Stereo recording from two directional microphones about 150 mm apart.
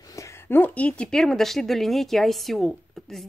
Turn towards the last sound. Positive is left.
turn(degrees=0)  # may be behind; listen again after turning